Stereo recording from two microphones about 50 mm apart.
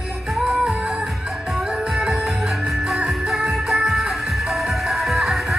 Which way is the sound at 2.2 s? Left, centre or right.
Centre.